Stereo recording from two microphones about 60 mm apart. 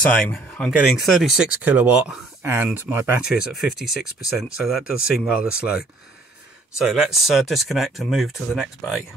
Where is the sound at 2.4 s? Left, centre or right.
Right.